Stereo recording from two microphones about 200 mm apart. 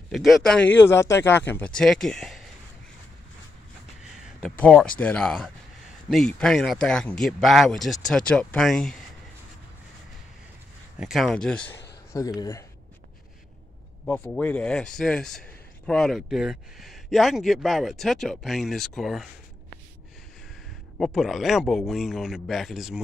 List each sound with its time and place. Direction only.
0.1 s speech: centre (ahead or behind)
4.0 s speech: 5° left (ahead or behind)
11.0 s speech: centre (ahead or behind)
12.4 s speech: 15° left (ahead or behind)
14.0 s speech: 5° left (ahead or behind)
21.0 s speech: centre (ahead or behind)